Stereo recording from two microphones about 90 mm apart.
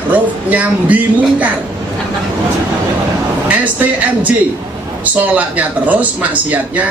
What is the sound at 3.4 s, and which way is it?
Speech, 15° right (ahead or behind).